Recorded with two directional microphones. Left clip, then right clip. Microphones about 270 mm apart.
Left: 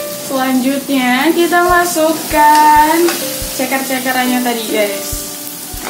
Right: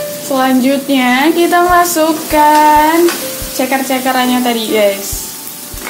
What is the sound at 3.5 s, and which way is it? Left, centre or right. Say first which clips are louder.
A woman's voice: right 3 dB; right.